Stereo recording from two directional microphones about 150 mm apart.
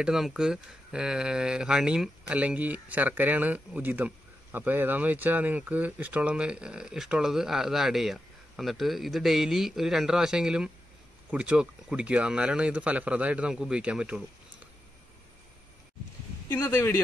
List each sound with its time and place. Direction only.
0.0 s speech: 5° right (ahead or behind)
16.4 s speech: 15° left (ahead or behind)